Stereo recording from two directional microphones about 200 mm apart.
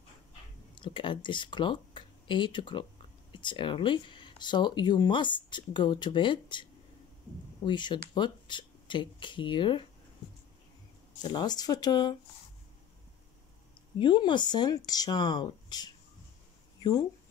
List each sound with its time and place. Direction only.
0.7 s speech: 25° left (ahead or behind)
7.6 s speech: 25° left (ahead or behind)
11.2 s speech: 20° left (ahead or behind)
13.9 s speech: 25° left (ahead or behind)